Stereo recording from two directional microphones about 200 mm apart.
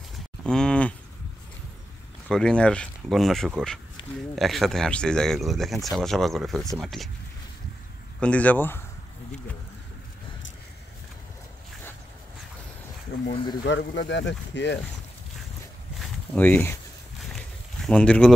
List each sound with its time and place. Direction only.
0.4 s cattle: 5° left (ahead or behind)
2.2 s speech: 5° left (ahead or behind)
8.2 s speech: 5° left (ahead or behind)
13.7 s speech: 65° left (ahead or behind)
16.0 s a sound: 10° left (ahead or behind)